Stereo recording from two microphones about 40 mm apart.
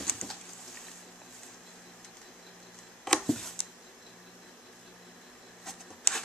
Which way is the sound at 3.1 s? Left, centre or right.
Centre.